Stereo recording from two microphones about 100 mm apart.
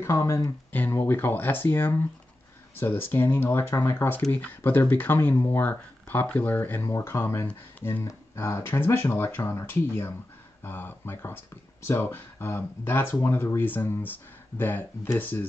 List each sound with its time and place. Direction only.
0.0 s speech: 30° left (ahead or behind)
0.7 s speech: 20° left (ahead or behind)